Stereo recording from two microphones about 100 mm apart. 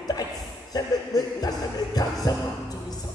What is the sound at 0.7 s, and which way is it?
Music, 40° left (ahead or behind).